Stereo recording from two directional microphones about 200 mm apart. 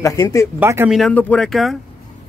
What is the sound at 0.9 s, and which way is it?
Speech, 5° left (ahead or behind).